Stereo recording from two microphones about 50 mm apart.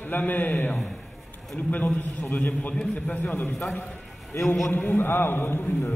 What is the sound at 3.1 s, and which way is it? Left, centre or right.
Speech, left.